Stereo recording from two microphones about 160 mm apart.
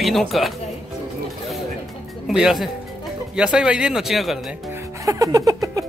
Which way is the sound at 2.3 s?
Centre (ahead or behind).